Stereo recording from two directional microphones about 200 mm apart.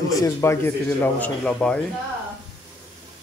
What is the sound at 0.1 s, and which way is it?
A man's voice, 15° left (ahead or behind).